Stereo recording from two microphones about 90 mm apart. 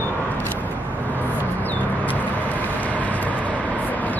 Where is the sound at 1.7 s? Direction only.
20° left (ahead or behind).